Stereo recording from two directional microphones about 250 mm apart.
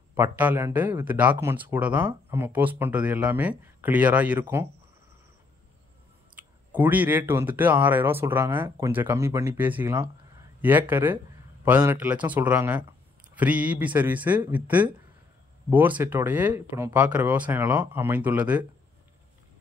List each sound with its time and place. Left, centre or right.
0.1 s speech: centre
6.8 s speech: centre